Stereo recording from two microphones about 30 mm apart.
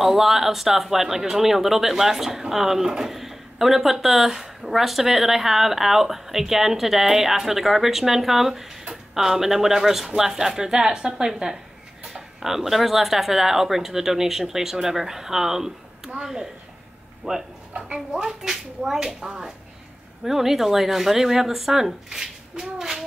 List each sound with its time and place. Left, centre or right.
0.0 s a woman's voice: centre
17.2 s speech: right
18.1 s speech: centre
20.2 s speech: centre